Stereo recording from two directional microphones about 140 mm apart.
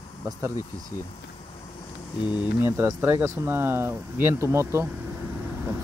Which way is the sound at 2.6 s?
20° right (ahead or behind).